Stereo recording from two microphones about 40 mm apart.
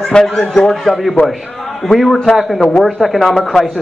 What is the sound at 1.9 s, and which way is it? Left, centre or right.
Speech, centre.